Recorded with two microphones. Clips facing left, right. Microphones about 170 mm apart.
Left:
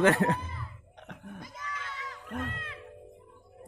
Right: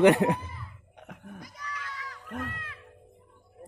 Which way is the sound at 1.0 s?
Centre (ahead or behind).